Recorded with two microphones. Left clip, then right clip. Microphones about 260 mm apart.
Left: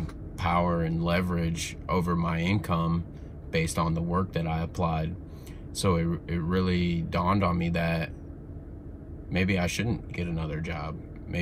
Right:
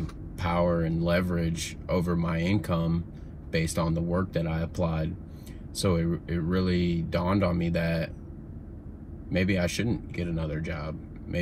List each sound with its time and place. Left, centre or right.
0.4 s speech: centre
9.3 s speech: centre